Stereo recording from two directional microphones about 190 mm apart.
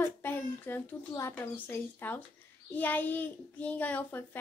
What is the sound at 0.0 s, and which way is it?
A child's voice, 10° left (ahead or behind).